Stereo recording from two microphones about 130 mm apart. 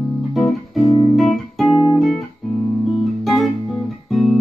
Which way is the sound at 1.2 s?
Centre (ahead or behind).